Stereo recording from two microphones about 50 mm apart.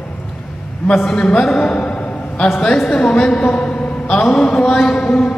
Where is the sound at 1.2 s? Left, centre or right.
Centre.